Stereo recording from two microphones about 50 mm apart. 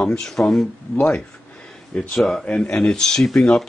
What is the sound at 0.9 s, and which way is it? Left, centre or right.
Speech, left.